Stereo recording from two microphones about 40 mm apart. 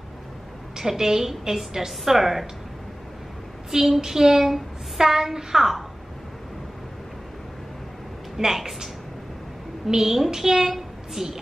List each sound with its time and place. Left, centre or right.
0.7 s a woman's voice: centre
3.7 s a woman's voice: centre
8.4 s a woman's voice: centre
9.8 s a woman's voice: centre